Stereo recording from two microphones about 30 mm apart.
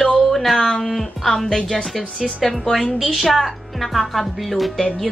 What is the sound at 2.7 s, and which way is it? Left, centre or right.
A woman's voice, centre.